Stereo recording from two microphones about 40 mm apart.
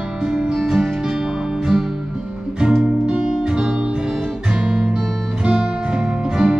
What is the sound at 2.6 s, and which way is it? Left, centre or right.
Music, right.